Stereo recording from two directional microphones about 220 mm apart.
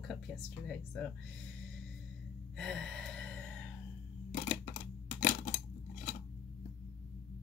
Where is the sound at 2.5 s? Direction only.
5° left (ahead or behind).